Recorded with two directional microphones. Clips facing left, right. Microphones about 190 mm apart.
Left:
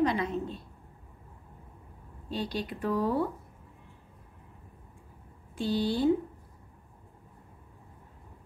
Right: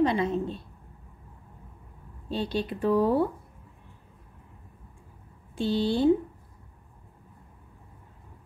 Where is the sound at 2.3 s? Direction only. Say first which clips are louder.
Right 4 dB; 25° right (ahead or behind).